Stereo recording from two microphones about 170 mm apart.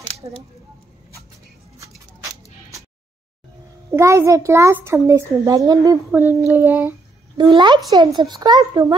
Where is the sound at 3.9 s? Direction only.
15° right (ahead or behind).